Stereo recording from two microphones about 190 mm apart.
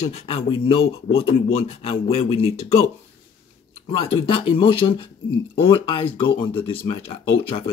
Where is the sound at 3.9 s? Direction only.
30° left (ahead or behind).